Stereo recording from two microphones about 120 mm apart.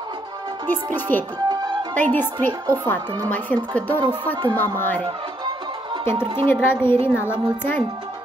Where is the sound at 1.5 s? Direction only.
35° right (ahead or behind).